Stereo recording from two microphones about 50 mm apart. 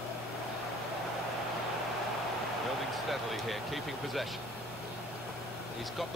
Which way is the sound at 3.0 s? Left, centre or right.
Centre.